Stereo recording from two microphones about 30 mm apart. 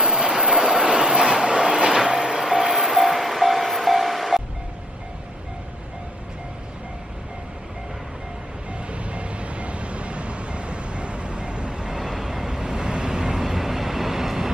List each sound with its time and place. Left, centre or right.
0.0 s train: right
2.1 s vehicle: centre
8.9 s vehicle: right
11.9 s vehicle: centre